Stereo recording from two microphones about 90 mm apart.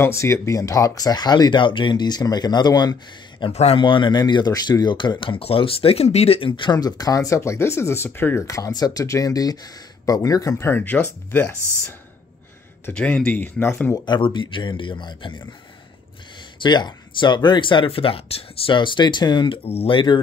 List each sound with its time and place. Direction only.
0.0 s speech: 35° left (ahead or behind); by 3.4 s 50° left (ahead or behind)
3.4 s speech: 70° left (ahead or behind); by 8.5 s 25° left (ahead or behind)
8.5 s speech: 40° left (ahead or behind)
10.7 s speech: 20° left (ahead or behind)
12.9 s speech: 15° left (ahead or behind)
14.0 s speech: 60° left (ahead or behind)
16.6 s speech: 55° left (ahead or behind)